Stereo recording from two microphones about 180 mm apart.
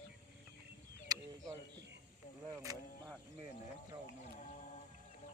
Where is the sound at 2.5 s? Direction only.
20° right (ahead or behind).